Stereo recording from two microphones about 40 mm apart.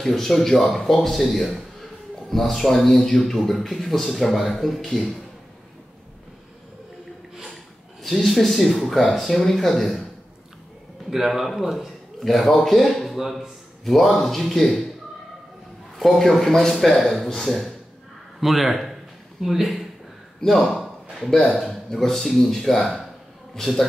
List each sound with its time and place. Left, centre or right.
0.0 s a man's voice: centre
8.0 s a man's voice: centre
11.1 s a man's voice: centre
16.0 s a man's voice: centre
16.4 s speech: centre
16.7 s a man's voice: centre
20.3 s a man's voice: centre
20.7 s a sound: centre
21.5 s a man's voice: centre